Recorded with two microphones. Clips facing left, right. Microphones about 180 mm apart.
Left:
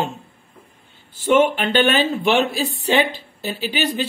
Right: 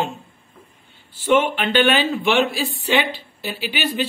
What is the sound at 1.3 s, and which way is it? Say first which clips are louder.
Speech: left 2 dB; 45° left (ahead or behind).